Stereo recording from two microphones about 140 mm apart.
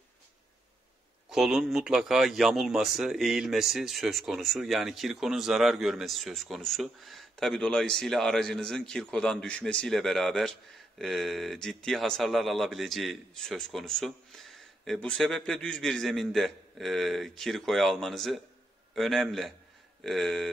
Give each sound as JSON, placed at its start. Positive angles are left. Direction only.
{"t": 1.3, "sound": "speech", "side_deg": 0}